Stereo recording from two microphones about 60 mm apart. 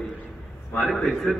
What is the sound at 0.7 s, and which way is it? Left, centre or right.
Speech, centre.